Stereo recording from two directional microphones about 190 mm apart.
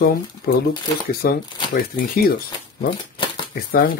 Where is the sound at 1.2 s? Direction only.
50° left (ahead or behind).